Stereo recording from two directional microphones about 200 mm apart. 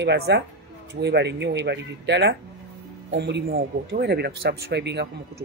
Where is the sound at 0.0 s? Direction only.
60° right (ahead or behind).